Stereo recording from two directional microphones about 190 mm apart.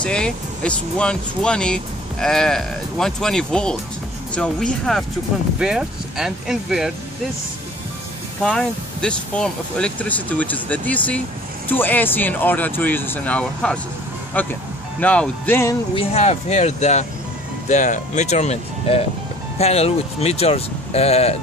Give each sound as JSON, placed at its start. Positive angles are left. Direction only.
{"t": 0.0, "sound": "speech", "side_deg": 5}
{"t": 8.5, "sound": "speech", "side_deg": 5}
{"t": 15.9, "sound": "speech", "side_deg": 30}